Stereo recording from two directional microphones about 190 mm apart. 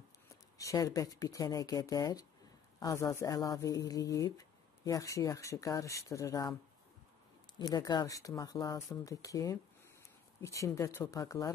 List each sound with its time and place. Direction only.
0.3 s speech: 15° left (ahead or behind)
7.5 s speech: 20° left (ahead or behind)